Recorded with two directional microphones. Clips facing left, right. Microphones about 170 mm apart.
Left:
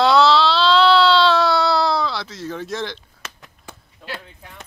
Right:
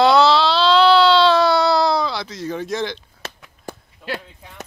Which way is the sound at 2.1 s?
5° left (ahead or behind).